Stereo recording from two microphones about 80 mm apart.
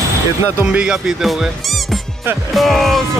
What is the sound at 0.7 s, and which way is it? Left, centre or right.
Speech, centre.